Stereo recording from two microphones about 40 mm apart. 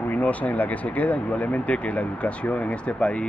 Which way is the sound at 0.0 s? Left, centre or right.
Left.